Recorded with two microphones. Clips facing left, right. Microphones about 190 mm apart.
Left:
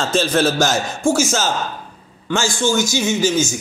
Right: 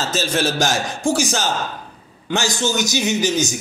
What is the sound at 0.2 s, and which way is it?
Speech, 55° left (ahead or behind).